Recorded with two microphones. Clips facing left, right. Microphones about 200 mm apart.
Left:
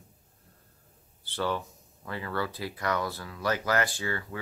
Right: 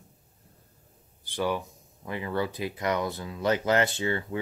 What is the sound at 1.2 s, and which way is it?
Speech, 15° right (ahead or behind).